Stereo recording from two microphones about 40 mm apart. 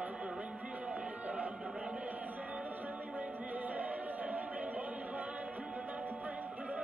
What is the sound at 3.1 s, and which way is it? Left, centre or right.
A capella, right.